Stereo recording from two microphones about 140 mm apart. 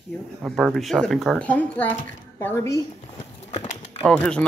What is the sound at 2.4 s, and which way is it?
Speech, 20° left (ahead or behind).